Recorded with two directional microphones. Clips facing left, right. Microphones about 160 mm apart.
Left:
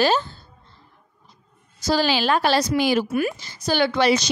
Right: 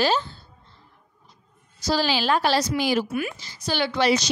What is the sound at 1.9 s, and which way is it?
A woman's voice, 55° left (ahead or behind).